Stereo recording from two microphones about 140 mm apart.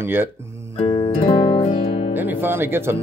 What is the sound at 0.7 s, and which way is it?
Music, 40° left (ahead or behind).